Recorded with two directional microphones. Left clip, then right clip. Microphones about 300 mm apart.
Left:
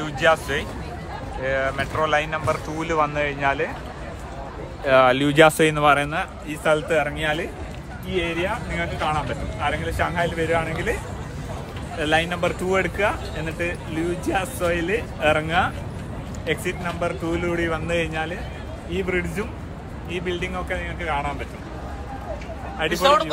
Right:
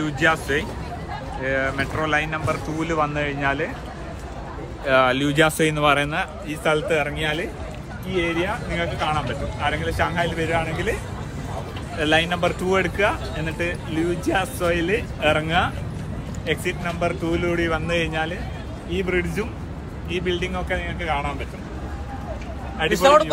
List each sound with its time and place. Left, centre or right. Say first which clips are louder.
0.0 s speech: left 1 dB; centre
4.8 s speech: left 2 dB; left
5.6 s speech: left 1 dB; centre
12.0 s speech: right 2 dB; centre
22.8 s speech: right 3 dB; centre